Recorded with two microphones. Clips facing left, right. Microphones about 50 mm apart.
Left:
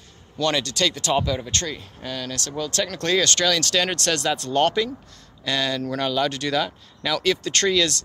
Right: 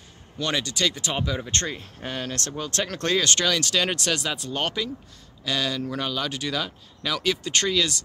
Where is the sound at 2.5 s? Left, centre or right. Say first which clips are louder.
Left 5 dB; right.